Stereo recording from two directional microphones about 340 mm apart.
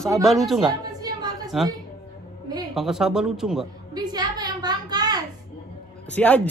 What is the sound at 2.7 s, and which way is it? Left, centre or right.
A woman's voice, centre.